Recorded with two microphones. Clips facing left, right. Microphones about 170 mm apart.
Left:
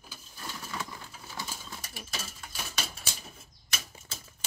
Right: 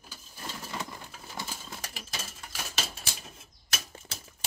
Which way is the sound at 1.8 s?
90° right.